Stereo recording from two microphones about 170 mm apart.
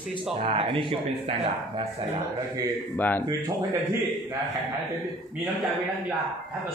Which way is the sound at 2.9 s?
10° left (ahead or behind).